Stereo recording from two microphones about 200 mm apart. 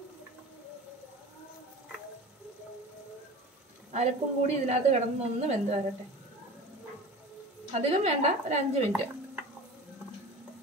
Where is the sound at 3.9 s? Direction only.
35° right (ahead or behind).